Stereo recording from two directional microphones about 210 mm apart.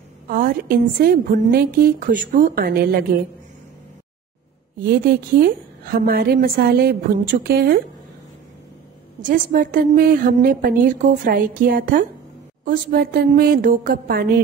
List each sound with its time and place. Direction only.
0.3 s a woman's voice: 45° right (ahead or behind)
4.7 s a woman's voice: 45° right (ahead or behind)
9.2 s a woman's voice: 40° right (ahead or behind)